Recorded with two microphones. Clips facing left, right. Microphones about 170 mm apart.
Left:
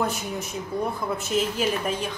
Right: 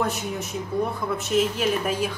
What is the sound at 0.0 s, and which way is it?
A woman's voice, centre (ahead or behind).